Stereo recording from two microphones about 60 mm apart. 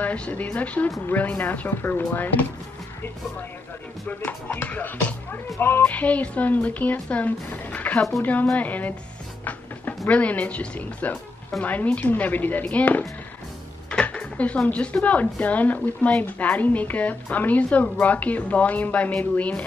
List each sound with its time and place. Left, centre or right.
0.0 s speech: left
4.1 s speech: left
14.0 s a sound: left
14.7 s speech: left